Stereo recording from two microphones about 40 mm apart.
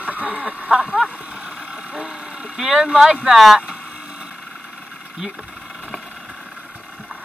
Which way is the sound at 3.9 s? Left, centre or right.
Centre.